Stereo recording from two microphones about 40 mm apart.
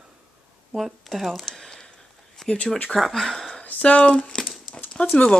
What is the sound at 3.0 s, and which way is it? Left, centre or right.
Speech, centre.